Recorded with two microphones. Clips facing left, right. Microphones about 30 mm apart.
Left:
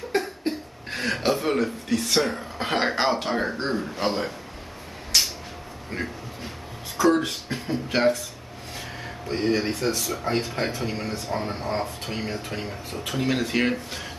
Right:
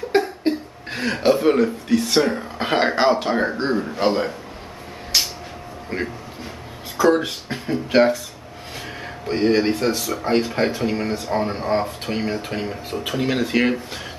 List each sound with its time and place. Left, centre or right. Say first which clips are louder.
0.5 s a sound: right 7 dB; right
0.9 s speech: right 6 dB; centre
5.9 s speech: right 5 dB; right
7.0 s speech: right 3 dB; centre
9.2 s speech: right 6 dB; right
11.1 s speech: right 6 dB; right; by 14.0 s centre